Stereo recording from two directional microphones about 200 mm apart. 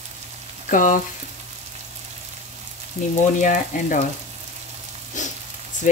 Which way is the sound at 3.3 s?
40° left (ahead or behind).